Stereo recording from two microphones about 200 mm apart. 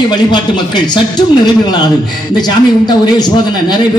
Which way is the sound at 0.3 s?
20° left (ahead or behind).